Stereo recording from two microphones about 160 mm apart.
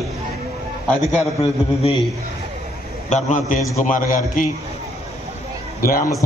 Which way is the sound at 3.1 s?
45° left (ahead or behind).